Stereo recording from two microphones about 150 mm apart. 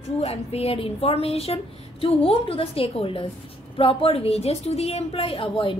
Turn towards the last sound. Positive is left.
turn(degrees=35)  # may be behind; listen again after turning